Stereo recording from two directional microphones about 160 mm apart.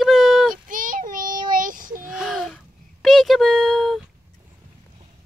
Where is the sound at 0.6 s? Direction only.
55° right (ahead or behind).